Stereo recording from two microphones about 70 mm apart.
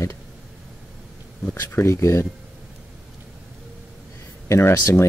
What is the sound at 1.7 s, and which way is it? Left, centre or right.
Speech, left.